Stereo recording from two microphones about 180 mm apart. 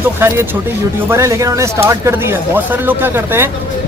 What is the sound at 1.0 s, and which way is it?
Speech, 15° right (ahead or behind).